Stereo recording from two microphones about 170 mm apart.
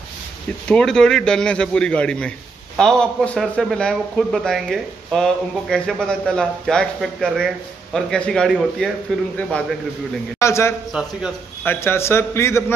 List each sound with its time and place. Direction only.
0.7 s a man's voice: 5° left (ahead or behind)
10.4 s a man's voice: 15° left (ahead or behind)
10.9 s a man's voice: 5° right (ahead or behind)
11.6 s a man's voice: 15° left (ahead or behind)